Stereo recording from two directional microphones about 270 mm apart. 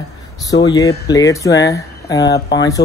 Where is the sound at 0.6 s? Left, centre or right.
Centre.